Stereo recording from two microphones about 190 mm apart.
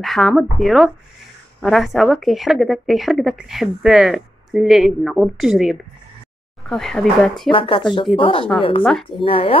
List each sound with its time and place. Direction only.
0.0 s a woman's voice: centre (ahead or behind)
7.5 s speech: 25° left (ahead or behind)
8.8 s a woman's voice: centre (ahead or behind)
9.2 s speech: 30° left (ahead or behind)